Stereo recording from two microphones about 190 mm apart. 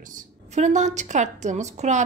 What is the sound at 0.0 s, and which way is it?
A woman's voice, 45° right (ahead or behind).